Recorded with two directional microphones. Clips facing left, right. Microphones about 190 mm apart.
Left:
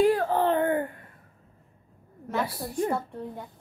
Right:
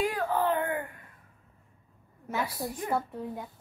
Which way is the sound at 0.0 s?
30° left (ahead or behind).